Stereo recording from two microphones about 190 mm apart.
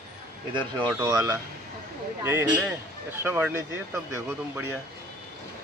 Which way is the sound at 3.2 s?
10° right (ahead or behind).